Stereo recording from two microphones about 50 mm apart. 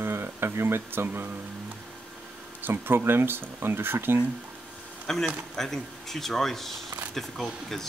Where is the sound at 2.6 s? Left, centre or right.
Right.